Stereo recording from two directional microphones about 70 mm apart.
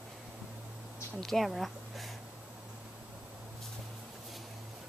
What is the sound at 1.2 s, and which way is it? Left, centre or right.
Speech, centre.